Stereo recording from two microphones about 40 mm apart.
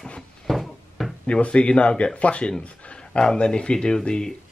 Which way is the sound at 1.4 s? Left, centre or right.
Left.